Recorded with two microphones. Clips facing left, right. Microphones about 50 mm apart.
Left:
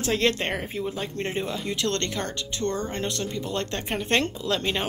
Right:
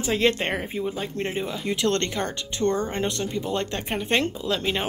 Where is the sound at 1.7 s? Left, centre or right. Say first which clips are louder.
Right 6 dB; right.